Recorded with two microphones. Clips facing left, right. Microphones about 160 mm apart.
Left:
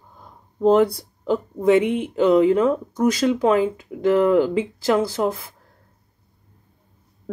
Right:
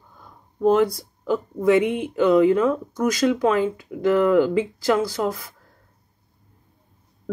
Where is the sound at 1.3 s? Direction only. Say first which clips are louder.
Left 1 dB; 30° left (ahead or behind).